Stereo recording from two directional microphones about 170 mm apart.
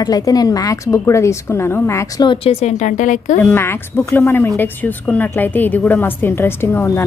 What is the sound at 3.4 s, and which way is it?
A woman's voice, 15° left (ahead or behind).